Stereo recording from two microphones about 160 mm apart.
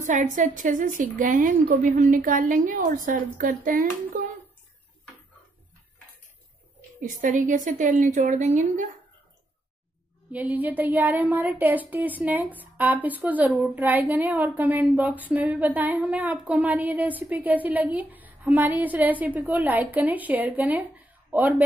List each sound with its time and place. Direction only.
0.0 s a woman's voice: 50° right (ahead or behind)
7.0 s a woman's voice: 55° right (ahead or behind)
10.3 s a sound: 10° right (ahead or behind)